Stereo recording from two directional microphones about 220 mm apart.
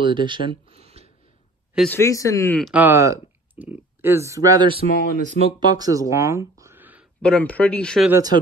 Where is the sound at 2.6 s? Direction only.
5° right (ahead or behind).